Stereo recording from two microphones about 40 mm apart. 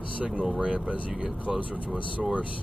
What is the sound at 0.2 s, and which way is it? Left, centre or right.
Speech, right.